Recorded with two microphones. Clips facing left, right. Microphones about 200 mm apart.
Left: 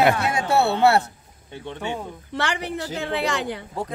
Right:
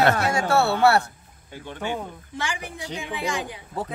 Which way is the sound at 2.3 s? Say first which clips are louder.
Left 6 dB; 70° left (ahead or behind).